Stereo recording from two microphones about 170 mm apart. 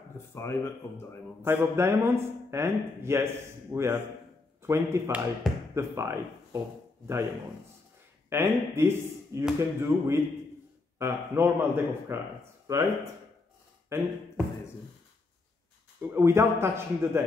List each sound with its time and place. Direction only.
0.3 s speech: 15° left (ahead or behind)
1.4 s speech: 15° right (ahead or behind)
5.4 s a sound: centre (ahead or behind)
5.8 s speech: 15° right (ahead or behind)
8.3 s speech: 15° right (ahead or behind)
16.0 s speech: 10° right (ahead or behind)